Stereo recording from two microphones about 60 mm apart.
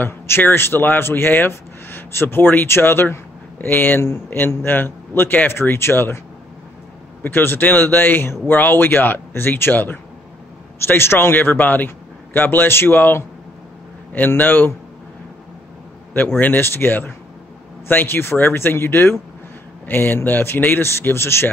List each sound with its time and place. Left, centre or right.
0.0 s a man's voice: left
4.0 s speech: left
4.6 s a man's voice: left
7.2 s a man's voice: left
16.3 s a man's voice: left